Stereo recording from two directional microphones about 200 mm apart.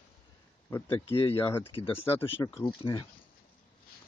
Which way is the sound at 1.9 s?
10° left (ahead or behind).